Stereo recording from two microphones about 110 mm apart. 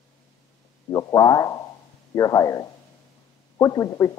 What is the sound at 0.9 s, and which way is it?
Speech, 35° left (ahead or behind).